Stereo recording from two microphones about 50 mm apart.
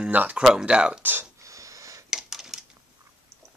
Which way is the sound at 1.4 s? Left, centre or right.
Right.